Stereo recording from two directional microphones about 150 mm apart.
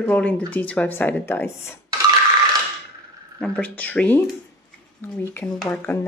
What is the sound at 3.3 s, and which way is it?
Speech, 5° left (ahead or behind).